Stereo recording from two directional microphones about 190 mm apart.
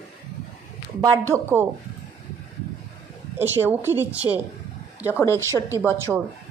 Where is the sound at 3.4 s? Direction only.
10° right (ahead or behind).